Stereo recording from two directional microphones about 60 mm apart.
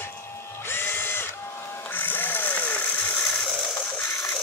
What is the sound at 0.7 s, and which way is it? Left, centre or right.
Drill, left.